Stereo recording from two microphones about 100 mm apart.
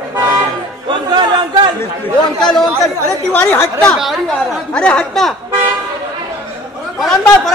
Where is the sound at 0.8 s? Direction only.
50° right (ahead or behind).